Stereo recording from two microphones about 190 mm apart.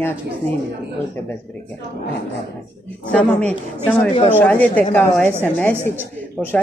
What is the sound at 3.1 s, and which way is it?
Speech, 5° left (ahead or behind).